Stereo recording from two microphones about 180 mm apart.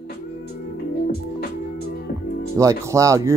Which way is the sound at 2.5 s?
15° right (ahead or behind).